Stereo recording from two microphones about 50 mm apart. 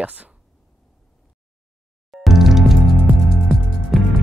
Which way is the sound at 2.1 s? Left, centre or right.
Centre.